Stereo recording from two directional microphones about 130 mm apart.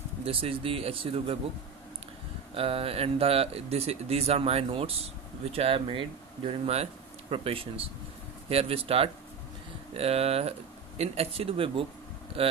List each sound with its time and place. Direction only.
0.2 s speech: 45° right (ahead or behind)
2.5 s speech: 45° right (ahead or behind)